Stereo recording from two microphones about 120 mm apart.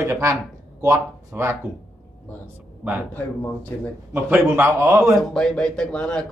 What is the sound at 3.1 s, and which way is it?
Speech, 15° left (ahead or behind).